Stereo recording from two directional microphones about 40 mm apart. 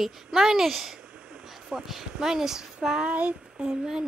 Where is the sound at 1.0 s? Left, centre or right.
Right.